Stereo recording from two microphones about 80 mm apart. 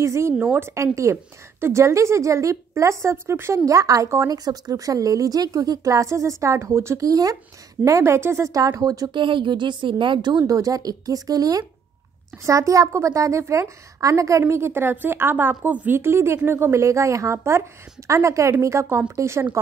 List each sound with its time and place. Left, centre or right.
0.0 s a woman's voice: right
0.4 s a woman's voice: right
4.3 s speech: right
7.1 s speech: right
7.8 s a woman's voice: right
9.1 s a woman's voice: right
10.4 s a woman's voice: right